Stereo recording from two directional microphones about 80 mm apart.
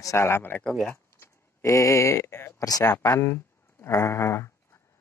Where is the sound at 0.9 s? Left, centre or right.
Left.